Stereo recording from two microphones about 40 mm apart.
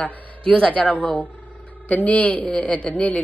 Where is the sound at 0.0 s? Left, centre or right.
Left.